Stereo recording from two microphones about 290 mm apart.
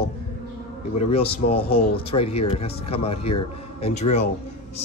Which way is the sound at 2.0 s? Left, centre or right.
Centre.